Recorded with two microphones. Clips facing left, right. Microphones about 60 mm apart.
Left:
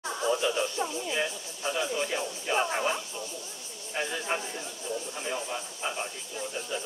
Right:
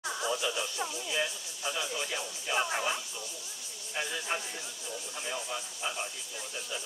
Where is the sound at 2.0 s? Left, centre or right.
Left.